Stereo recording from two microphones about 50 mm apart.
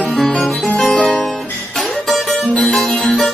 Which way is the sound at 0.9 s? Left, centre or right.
Left.